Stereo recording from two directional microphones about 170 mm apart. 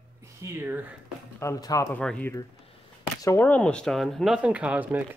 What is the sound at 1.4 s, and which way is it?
Speech, 20° left (ahead or behind).